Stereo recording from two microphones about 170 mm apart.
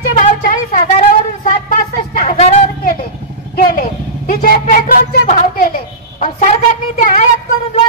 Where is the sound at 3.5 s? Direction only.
55° left (ahead or behind).